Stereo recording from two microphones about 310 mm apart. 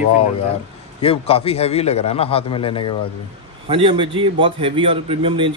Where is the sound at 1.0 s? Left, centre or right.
Centre.